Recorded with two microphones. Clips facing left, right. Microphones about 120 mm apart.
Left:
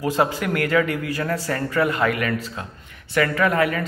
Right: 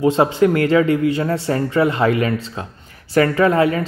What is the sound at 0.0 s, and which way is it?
Speech, 25° right (ahead or behind).